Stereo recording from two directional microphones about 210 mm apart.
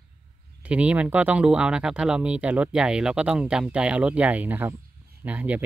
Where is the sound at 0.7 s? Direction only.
5° right (ahead or behind).